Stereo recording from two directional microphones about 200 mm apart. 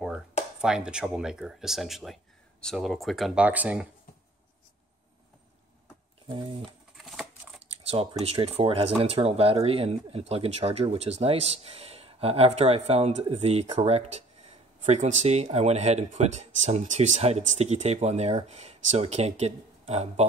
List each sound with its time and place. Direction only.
0.6 s speech: 5° right (ahead or behind)
6.2 s speech: 25° right (ahead or behind)
7.0 s scissors: centre (ahead or behind)
7.6 s speech: 30° right (ahead or behind)